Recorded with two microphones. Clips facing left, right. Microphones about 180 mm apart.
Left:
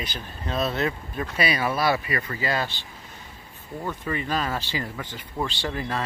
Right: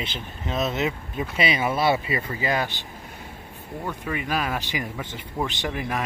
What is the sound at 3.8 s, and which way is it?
Speech, 10° right (ahead or behind).